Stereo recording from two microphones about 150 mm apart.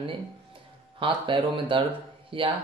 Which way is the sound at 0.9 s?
35° right (ahead or behind).